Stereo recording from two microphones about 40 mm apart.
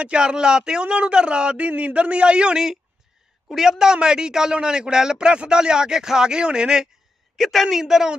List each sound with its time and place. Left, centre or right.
0.0 s speech: right
1.7 s a man's voice: right
2.0 s speech: right
3.5 s speech: centre
7.3 s a woman's voice: centre
7.6 s speech: centre